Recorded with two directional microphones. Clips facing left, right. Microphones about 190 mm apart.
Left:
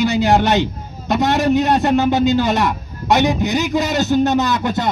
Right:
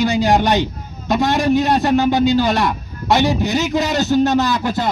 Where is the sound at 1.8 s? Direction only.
20° left (ahead or behind).